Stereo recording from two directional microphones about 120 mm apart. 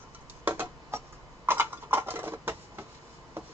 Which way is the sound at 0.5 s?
20° right (ahead or behind).